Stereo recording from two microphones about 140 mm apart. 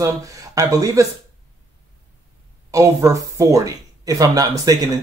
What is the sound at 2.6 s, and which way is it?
Speech, 20° right (ahead or behind).